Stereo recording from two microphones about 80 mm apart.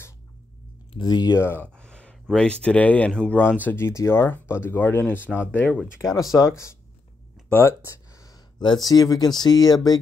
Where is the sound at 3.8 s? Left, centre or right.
Left.